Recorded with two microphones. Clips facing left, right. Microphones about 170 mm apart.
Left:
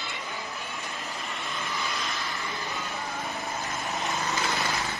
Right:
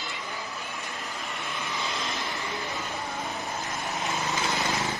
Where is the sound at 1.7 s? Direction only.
20° right (ahead or behind).